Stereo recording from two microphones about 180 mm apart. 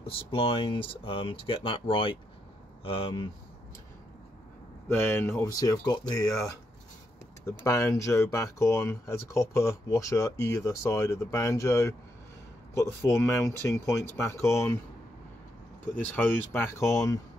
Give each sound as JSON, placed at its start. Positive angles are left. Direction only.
{"t": 0.0, "sound": "speech", "side_deg": 30}
{"t": 4.8, "sound": "speech", "side_deg": 15}
{"t": 7.4, "sound": "speech", "side_deg": 15}
{"t": 16.2, "sound": "speech", "side_deg": 15}